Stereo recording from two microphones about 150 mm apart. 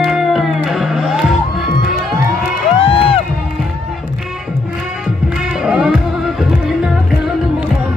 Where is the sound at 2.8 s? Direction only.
40° left (ahead or behind).